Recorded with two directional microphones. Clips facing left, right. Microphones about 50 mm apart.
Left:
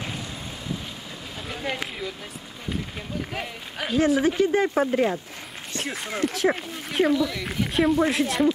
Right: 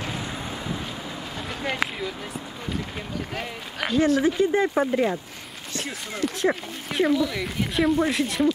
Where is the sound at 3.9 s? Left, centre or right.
Centre.